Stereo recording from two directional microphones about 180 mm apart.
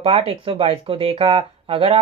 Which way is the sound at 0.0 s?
30° right (ahead or behind).